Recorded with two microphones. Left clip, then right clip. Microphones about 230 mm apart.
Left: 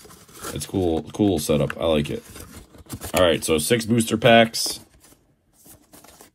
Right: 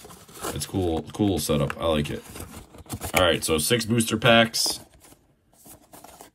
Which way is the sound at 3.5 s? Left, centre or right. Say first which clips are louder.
Left 3 dB; centre.